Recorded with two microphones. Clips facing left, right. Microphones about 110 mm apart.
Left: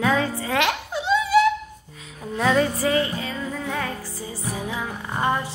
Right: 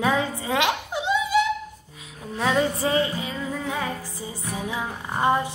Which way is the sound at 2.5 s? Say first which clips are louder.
Left 1 dB; 20° right (ahead or behind).